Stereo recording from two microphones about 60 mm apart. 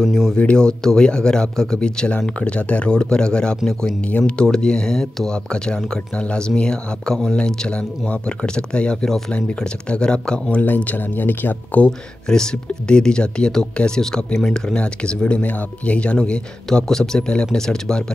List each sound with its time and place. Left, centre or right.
0.0 s speech: centre
10.5 s speech: left
12.3 s speech: centre